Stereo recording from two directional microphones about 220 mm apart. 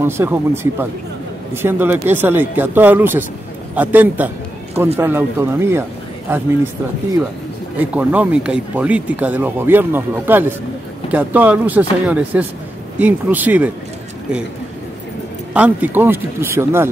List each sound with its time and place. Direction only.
0.0 s speech: 10° right (ahead or behind)
7.7 s speech: 10° right (ahead or behind)
15.5 s speech: 5° right (ahead or behind)